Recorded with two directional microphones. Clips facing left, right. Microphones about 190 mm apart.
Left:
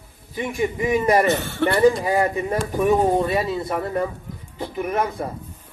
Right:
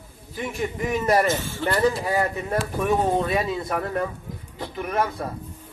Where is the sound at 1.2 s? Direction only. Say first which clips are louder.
Left 4 dB; 65° left (ahead or behind).